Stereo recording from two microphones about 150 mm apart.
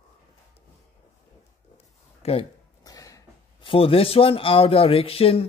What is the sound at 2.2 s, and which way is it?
Speech, 45° left (ahead or behind).